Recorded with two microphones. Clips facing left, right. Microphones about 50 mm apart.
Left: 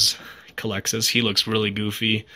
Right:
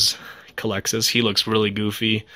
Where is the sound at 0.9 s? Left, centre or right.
Centre.